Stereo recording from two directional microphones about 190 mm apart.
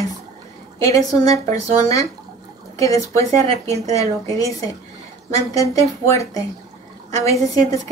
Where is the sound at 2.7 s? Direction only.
15° left (ahead or behind).